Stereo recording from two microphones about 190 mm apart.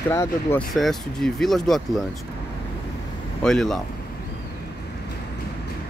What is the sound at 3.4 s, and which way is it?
Speech, centre (ahead or behind).